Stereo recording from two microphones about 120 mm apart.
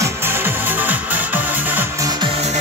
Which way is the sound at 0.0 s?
20° right (ahead or behind).